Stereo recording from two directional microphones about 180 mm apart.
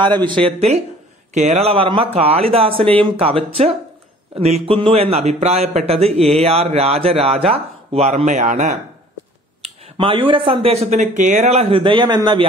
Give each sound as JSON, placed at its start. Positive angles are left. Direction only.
{"t": 0.0, "sound": "a man's voice", "side_deg": -25}
{"t": 9.9, "sound": "a man's voice", "side_deg": -30}